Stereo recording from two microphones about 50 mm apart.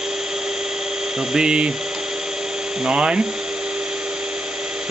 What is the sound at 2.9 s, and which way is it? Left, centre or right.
Speech, right.